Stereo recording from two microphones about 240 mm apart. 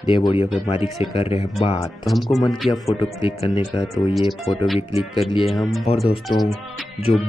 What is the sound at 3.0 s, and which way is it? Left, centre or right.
Speech, left.